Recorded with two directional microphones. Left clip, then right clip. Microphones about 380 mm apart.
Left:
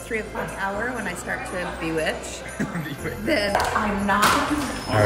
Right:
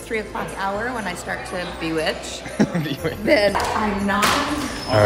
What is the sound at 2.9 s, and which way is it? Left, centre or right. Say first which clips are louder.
Speech: right 5 dB; right.